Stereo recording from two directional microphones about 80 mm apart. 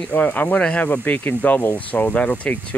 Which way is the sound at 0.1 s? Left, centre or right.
Centre.